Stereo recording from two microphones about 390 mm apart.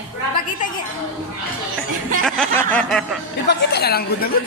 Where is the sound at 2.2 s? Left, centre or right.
Centre.